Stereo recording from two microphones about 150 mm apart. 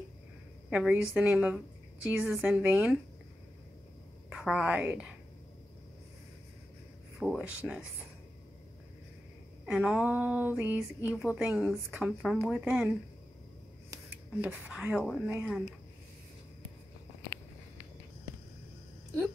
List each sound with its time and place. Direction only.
0.7 s speech: 5° right (ahead or behind)
4.3 s a woman's voice: 5° right (ahead or behind)
7.2 s a woman's voice: 5° right (ahead or behind)
9.7 s a woman's voice: 5° right (ahead or behind)
14.4 s a woman's voice: 10° right (ahead or behind)
15.2 s speech: 15° right (ahead or behind)